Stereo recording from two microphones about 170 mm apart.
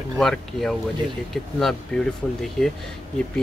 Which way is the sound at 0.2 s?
5° left (ahead or behind).